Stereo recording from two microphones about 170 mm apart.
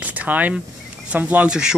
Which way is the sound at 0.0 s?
10° right (ahead or behind).